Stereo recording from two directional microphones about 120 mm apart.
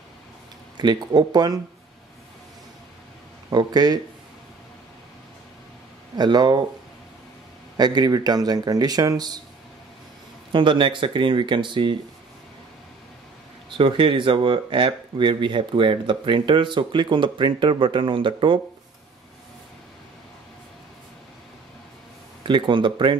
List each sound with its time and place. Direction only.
0.7 s speech: 35° right (ahead or behind)
3.4 s speech: 35° right (ahead or behind)
6.1 s speech: 35° right (ahead or behind)
7.7 s speech: 35° right (ahead or behind)
10.5 s speech: 45° right (ahead or behind)
13.7 s speech: 45° right (ahead or behind)
22.4 s speech: 45° right (ahead or behind)